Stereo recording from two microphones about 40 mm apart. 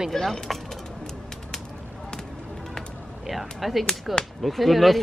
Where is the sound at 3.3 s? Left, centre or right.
Centre.